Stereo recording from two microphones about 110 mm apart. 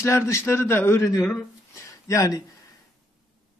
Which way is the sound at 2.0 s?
30° left (ahead or behind).